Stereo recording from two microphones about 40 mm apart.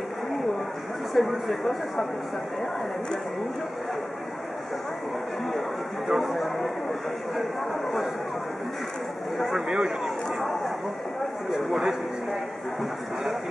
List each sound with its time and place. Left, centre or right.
1.1 s speech: centre
6.0 s speech: centre
9.7 s speech: centre
10.0 s speech: centre
11.5 s a man's voice: centre